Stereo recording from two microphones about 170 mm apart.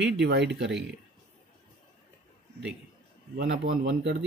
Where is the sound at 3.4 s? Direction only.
90° right.